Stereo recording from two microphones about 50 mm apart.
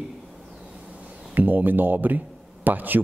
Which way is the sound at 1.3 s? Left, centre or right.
Right.